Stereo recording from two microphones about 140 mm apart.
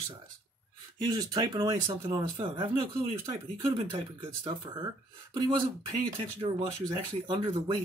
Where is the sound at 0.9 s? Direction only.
30° right (ahead or behind).